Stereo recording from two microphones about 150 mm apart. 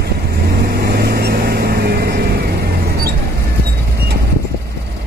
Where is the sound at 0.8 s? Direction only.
90° right.